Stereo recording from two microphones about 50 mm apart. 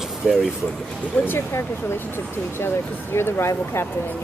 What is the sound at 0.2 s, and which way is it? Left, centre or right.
Speech, centre.